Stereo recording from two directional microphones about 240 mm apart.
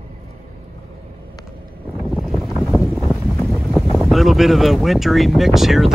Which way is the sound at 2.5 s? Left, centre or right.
Centre.